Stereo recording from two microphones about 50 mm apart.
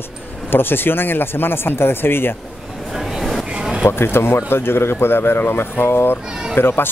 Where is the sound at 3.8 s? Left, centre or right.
Left.